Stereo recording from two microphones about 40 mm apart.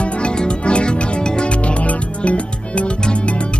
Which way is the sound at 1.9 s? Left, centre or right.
Left.